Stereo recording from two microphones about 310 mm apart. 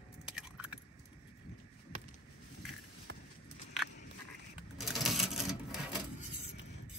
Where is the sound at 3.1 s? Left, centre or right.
Right.